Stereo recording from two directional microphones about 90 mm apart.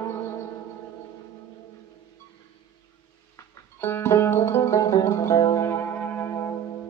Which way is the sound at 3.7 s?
25° left (ahead or behind).